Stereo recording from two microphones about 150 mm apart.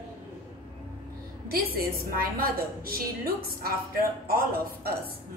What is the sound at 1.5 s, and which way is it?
A woman's voice, 75° right (ahead or behind).